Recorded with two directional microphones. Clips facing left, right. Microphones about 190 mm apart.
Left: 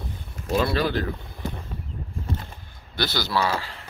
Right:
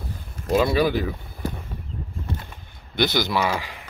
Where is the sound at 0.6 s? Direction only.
10° right (ahead or behind).